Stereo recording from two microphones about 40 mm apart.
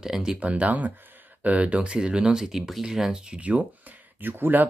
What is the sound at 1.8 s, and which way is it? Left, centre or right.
Speech, right.